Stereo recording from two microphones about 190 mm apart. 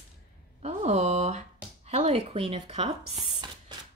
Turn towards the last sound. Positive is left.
turn(degrees=-35)  # may be behind; listen again after turning